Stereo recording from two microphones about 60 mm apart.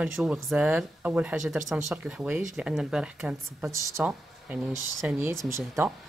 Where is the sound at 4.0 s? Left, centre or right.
Right.